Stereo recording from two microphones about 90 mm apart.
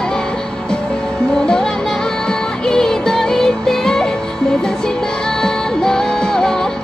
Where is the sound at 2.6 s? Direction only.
5° left (ahead or behind).